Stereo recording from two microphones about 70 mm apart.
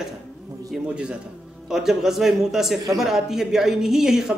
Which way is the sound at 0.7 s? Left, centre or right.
Centre.